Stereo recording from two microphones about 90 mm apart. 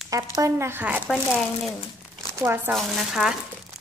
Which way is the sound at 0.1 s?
35° right (ahead or behind).